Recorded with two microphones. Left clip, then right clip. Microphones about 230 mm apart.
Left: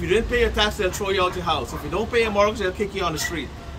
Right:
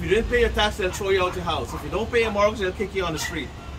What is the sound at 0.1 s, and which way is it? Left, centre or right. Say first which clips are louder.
A man's voice: even; left.